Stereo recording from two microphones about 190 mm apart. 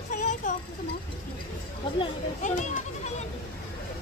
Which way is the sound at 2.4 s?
40° left (ahead or behind).